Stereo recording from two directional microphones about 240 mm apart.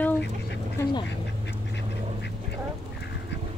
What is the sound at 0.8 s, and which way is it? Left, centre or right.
Speech, centre.